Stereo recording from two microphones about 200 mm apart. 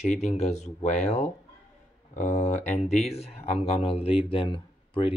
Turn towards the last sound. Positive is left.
turn(degrees=25)  # may be behind; listen again after turning